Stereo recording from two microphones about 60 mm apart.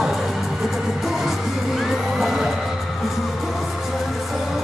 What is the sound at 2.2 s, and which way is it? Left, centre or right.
Music, centre.